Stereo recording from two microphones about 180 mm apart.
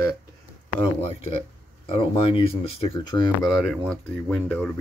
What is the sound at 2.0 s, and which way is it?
Speech, 30° left (ahead or behind).